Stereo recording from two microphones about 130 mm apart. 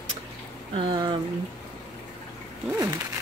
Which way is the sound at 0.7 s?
35° right (ahead or behind).